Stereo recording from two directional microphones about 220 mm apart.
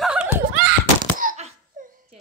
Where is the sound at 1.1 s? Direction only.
40° right (ahead or behind).